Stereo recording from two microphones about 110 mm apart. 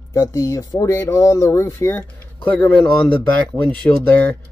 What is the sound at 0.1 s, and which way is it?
Speech, 30° left (ahead or behind).